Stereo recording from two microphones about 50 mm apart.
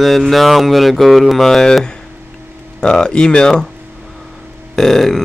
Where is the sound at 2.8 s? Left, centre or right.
Centre.